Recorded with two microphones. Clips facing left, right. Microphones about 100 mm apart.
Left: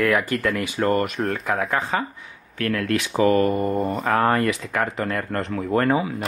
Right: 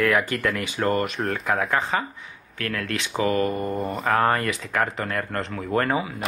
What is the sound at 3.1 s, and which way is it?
Mantra, 30° left (ahead or behind).